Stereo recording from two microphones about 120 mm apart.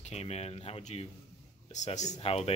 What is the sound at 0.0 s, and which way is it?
Speech, 60° left (ahead or behind).